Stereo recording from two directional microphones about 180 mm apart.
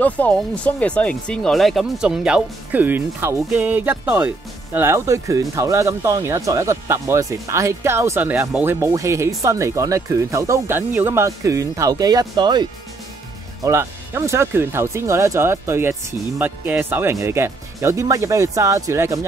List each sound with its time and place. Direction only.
0.0 s speech: 10° left (ahead or behind); by 12.6 s 25° right (ahead or behind)
13.7 s speech: 15° right (ahead or behind)